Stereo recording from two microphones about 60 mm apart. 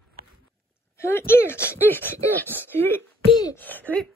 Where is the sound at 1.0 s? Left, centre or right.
Left.